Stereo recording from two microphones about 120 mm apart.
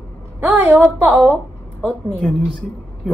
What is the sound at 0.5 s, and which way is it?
Speech, 15° right (ahead or behind).